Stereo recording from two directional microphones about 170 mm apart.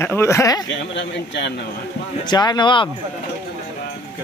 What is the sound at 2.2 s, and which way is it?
Speech, 25° left (ahead or behind).